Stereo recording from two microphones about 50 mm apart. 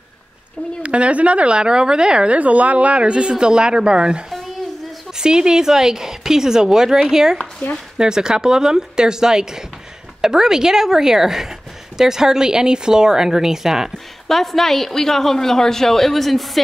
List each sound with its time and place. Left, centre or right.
0.8 s a woman's voice: right
13.9 s a woman's voice: centre